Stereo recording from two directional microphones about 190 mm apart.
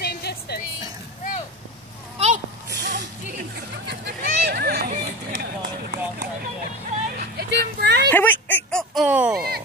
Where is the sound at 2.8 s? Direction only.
65° right (ahead or behind).